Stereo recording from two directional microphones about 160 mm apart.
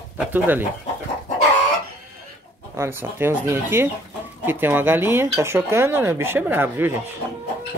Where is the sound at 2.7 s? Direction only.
15° right (ahead or behind).